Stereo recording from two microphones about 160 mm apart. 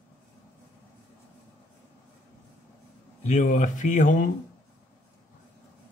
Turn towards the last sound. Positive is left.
turn(degrees=55)  # may be behind; listen again after turning